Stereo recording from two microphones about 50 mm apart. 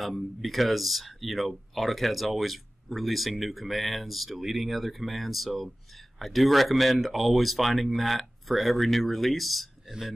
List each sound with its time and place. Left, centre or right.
0.0 s speech: centre
9.8 s speech: centre